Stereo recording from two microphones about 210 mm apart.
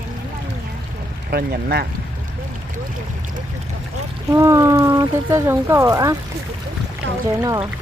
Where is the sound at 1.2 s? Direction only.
45° right (ahead or behind).